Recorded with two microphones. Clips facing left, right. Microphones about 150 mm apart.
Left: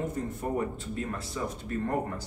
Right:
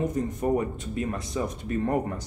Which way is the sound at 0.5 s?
15° right (ahead or behind).